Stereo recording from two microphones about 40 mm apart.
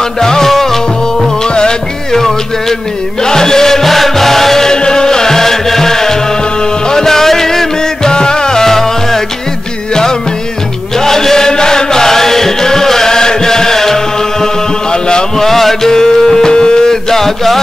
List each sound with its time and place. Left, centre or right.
0.2 s music: centre
1.5 s music: left
3.3 s music: centre
11.0 s chant: centre
15.4 s music: centre